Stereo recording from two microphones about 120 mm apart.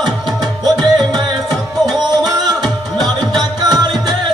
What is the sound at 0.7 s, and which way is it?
Music, 35° right (ahead or behind).